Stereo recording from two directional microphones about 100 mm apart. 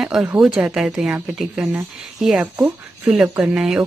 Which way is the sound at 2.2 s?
5° right (ahead or behind).